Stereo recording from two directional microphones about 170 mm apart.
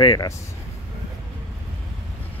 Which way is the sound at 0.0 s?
25° left (ahead or behind).